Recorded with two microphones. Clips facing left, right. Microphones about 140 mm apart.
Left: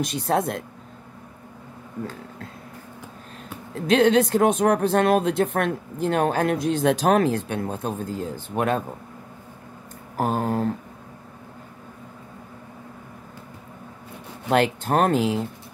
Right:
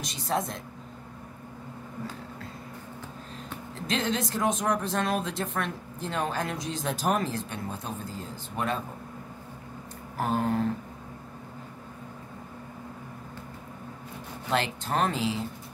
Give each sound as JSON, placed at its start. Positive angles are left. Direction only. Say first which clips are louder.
{"t": 0.0, "sound": "speech", "louder": "left 7 dB", "side_deg": 60}
{"t": 3.7, "sound": "speech", "louder": "left 12 dB", "side_deg": 60}
{"t": 10.1, "sound": "a sound", "louder": "left 3 dB", "side_deg": 40}
{"t": 14.5, "sound": "speech", "louder": "left 8 dB", "side_deg": 55}